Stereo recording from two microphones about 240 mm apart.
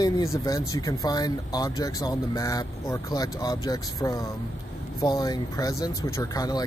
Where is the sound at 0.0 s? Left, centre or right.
Centre.